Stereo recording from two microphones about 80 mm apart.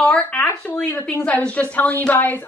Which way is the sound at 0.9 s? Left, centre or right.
Left.